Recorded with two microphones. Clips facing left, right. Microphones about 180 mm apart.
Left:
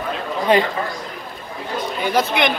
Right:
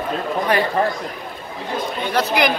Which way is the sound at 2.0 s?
Centre (ahead or behind).